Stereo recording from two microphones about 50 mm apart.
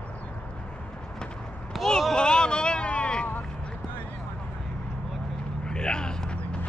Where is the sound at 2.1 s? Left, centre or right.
Centre.